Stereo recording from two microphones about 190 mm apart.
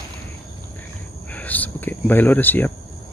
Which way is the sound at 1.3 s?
10° left (ahead or behind).